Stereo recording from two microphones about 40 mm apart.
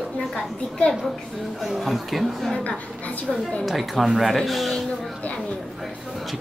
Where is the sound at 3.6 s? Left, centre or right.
Centre.